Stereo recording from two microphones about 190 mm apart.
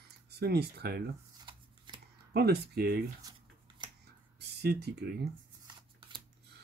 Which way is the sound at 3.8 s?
25° right (ahead or behind).